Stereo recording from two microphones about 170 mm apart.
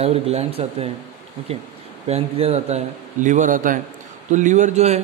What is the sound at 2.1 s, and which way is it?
Speech, 35° right (ahead or behind).